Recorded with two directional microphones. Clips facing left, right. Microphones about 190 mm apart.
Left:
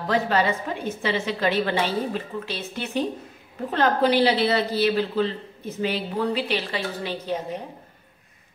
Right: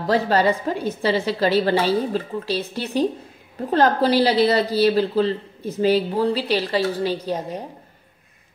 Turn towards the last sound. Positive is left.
turn(degrees=-35)  # may be behind; listen again after turning